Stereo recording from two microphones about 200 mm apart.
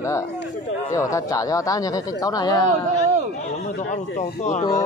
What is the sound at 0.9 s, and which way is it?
Speech, 15° left (ahead or behind).